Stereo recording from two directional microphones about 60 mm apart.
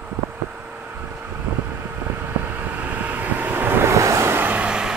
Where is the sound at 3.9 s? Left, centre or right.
Right.